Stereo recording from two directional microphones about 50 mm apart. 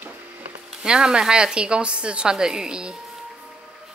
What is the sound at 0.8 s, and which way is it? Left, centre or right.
Speech, centre.